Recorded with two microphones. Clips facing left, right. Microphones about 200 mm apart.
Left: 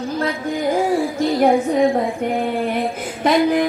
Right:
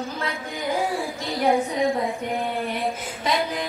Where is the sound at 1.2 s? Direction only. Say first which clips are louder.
Left 5 dB; 50° left (ahead or behind).